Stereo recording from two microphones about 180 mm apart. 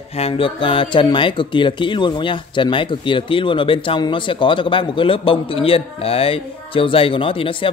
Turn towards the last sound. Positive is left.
turn(degrees=30)  # may be behind; listen again after turning